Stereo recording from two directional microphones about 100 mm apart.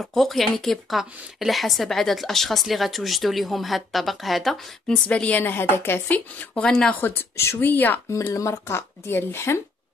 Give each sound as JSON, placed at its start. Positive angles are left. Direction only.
{"t": 0.0, "sound": "a woman's voice", "side_deg": 0}
{"t": 5.0, "sound": "a woman's voice", "side_deg": 15}
{"t": 7.0, "sound": "speech", "side_deg": 20}
{"t": 8.1, "sound": "speech", "side_deg": 30}